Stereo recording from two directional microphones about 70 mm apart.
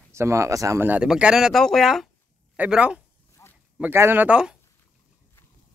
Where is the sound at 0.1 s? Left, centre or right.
Right.